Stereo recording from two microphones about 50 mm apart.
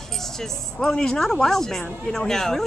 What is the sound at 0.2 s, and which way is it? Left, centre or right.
Speech, centre.